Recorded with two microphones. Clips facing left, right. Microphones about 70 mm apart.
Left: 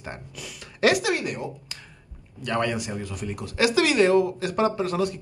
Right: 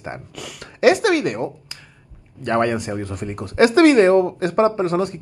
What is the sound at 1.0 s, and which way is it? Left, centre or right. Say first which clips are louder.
Speech: right 8 dB; right.